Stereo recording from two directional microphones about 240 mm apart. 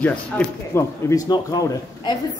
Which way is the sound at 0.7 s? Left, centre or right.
Centre.